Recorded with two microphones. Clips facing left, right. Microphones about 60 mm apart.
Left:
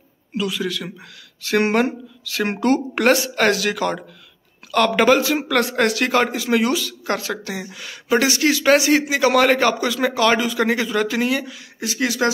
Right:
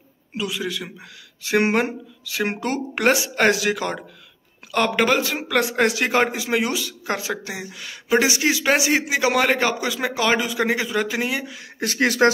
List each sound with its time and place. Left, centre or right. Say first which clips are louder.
0.3 s speech: left 3 dB; centre
4.9 s speech: left 4 dB; centre
7.7 s speech: even; centre
11.8 s speech: right 3 dB; right